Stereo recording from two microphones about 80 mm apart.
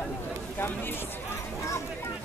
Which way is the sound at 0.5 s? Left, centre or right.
Left.